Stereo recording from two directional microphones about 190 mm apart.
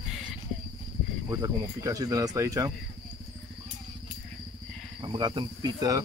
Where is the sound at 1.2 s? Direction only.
15° right (ahead or behind).